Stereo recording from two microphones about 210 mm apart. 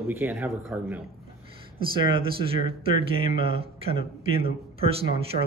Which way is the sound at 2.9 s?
25° right (ahead or behind).